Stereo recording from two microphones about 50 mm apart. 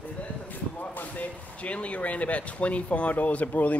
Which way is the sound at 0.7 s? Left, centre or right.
Left.